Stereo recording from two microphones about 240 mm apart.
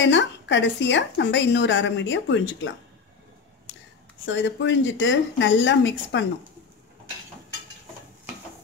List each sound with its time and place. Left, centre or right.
0.0 s a woman's voice: left
4.3 s a woman's voice: left